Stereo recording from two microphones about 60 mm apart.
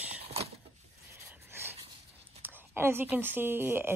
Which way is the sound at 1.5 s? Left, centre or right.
Right.